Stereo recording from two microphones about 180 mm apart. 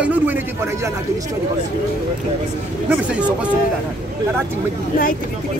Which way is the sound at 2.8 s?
5° right (ahead or behind).